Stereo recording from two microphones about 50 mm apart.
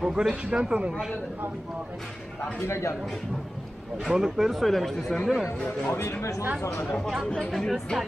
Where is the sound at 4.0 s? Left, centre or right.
Centre.